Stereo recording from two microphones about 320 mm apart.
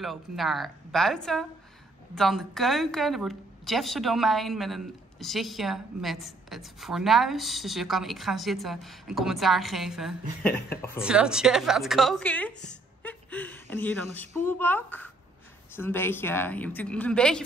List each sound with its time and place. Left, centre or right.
0.0 s speech: centre